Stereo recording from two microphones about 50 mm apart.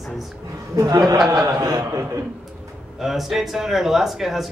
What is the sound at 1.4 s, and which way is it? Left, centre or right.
Speech, right.